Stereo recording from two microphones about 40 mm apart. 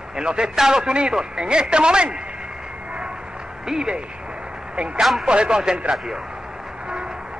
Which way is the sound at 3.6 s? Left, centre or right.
Centre.